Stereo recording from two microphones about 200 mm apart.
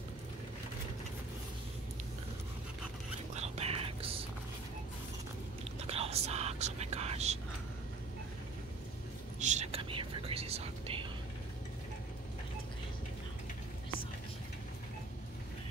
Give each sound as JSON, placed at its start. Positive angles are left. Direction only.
{"t": 3.3, "sound": "whispering", "side_deg": -30}
{"t": 5.8, "sound": "whispering", "side_deg": -30}
{"t": 9.4, "sound": "whispering", "side_deg": -35}